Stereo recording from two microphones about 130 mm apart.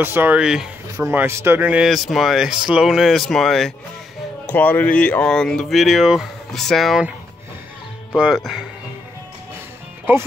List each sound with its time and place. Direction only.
0.0 s speech: 15° right (ahead or behind)
0.9 s speech: 20° right (ahead or behind)
1.9 s speech: centre (ahead or behind)
4.5 s speech: 15° left (ahead or behind)
8.2 s speech: 5° right (ahead or behind)